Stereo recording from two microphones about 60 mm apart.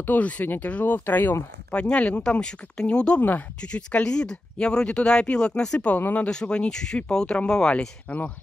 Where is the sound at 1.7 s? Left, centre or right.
Centre.